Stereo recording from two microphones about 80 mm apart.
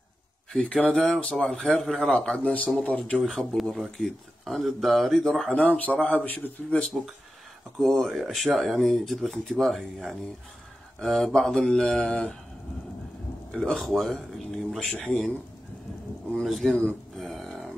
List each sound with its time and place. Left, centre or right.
0.5 s a man's voice: centre
3.2 s speech: centre
5.5 s speech: centre
6.9 s speech: centre
13.5 s speech: centre
16.3 s speech: centre
17.2 s a sound: centre